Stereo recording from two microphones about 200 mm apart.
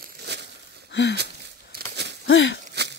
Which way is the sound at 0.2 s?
60° right (ahead or behind).